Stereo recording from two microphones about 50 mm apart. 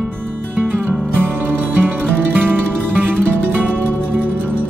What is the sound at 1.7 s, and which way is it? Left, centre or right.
Music, right.